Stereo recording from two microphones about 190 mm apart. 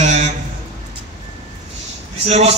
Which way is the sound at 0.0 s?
40° right (ahead or behind).